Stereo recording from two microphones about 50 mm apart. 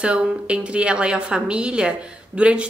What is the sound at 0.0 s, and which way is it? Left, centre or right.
A woman's voice, right.